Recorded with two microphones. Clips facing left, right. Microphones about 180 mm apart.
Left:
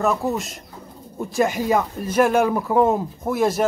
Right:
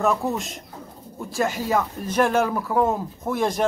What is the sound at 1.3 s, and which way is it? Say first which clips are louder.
Speech: left 3 dB; 15° left (ahead or behind).